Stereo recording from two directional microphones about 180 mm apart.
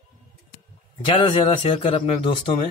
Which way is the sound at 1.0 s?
30° left (ahead or behind).